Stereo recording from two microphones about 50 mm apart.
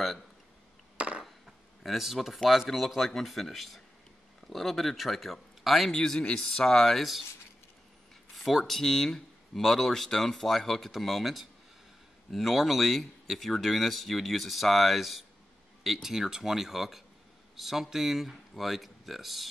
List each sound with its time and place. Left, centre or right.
0.9 s a sound: right
1.2 s speech: centre
7.0 s speech: centre
8.4 s speech: centre